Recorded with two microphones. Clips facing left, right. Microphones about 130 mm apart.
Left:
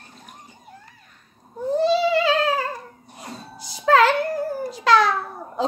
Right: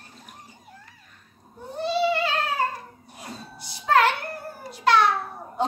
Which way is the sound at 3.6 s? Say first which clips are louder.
Left 4 dB; 90° left.